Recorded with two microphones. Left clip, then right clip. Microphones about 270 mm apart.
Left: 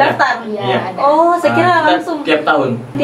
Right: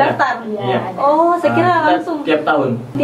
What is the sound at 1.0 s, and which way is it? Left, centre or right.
Speech, centre.